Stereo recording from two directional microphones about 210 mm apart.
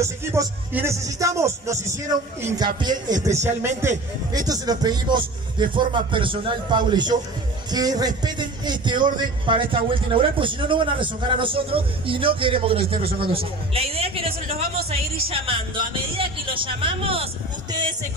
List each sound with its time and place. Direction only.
0.0 s a man's voice: 15° right (ahead or behind)